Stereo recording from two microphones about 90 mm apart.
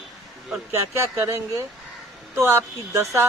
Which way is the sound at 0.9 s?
30° right (ahead or behind).